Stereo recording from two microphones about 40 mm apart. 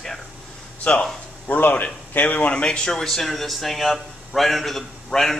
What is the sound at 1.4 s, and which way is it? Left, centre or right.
Speech, left.